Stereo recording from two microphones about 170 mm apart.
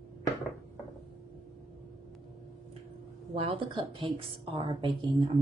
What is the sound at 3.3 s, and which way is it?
A woman's voice, 30° right (ahead or behind).